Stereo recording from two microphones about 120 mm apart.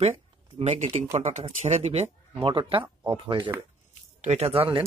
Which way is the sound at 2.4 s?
45° right (ahead or behind).